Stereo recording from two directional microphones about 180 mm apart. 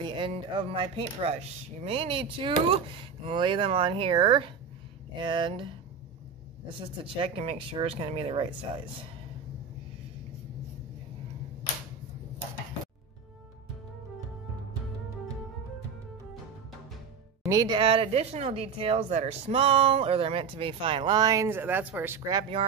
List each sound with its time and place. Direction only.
0.0 s speech: 25° right (ahead or behind)
6.7 s speech: 30° right (ahead or behind)
17.5 s speech: 20° right (ahead or behind)